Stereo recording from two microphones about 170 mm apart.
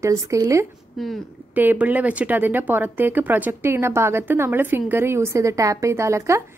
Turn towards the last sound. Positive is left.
turn(degrees=-15)  # may be behind; listen again after turning